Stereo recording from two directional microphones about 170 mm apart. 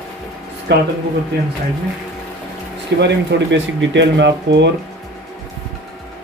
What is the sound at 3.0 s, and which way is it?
Speech, 90° right.